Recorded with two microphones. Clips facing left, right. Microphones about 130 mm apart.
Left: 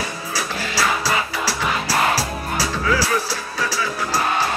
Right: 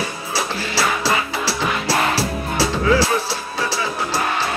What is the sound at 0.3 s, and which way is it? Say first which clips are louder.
Music: right 3 dB; 30° right (ahead or behind).